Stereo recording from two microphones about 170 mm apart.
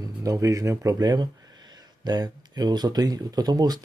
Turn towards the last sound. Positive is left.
turn(degrees=-25)  # may be behind; listen again after turning